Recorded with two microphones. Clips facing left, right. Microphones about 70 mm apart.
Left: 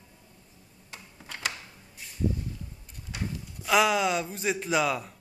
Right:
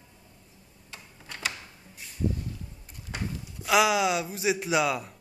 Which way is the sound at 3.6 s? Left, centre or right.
Centre.